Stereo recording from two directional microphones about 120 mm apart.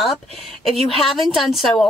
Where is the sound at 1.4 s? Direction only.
Centre (ahead or behind).